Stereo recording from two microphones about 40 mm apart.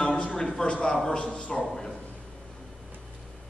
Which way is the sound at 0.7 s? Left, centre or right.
Left.